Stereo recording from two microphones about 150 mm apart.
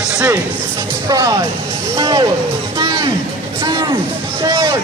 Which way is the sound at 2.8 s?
35° right (ahead or behind).